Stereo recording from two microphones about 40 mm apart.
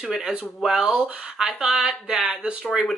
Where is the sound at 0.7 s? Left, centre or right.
Centre.